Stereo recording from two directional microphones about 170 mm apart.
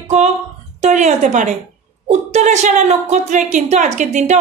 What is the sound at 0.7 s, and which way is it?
A woman's voice, 45° right (ahead or behind).